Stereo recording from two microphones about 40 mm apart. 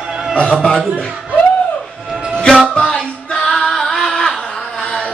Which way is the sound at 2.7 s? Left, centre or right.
Left.